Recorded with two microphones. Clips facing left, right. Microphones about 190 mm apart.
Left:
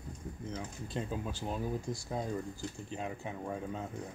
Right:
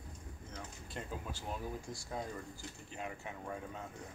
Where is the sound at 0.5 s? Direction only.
20° left (ahead or behind).